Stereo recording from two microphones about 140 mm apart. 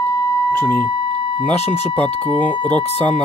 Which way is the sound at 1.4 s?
15° left (ahead or behind).